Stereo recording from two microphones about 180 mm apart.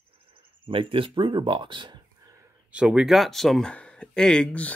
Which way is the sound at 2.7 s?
5° right (ahead or behind).